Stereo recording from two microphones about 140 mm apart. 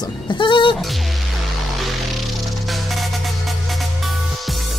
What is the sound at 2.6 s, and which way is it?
Music, centre (ahead or behind).